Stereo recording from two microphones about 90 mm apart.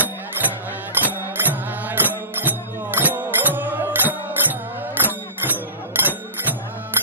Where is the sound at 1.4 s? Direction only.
20° right (ahead or behind).